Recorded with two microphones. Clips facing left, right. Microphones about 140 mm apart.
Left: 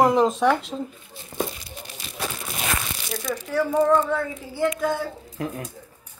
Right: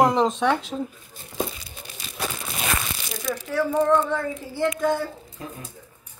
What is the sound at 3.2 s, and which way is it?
Speech, centre (ahead or behind).